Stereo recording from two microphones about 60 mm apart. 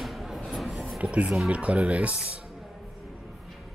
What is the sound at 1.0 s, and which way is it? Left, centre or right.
Speech, right.